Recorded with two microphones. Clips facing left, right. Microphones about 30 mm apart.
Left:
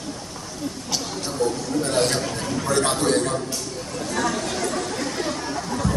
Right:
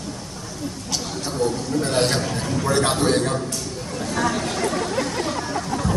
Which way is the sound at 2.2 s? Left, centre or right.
Centre.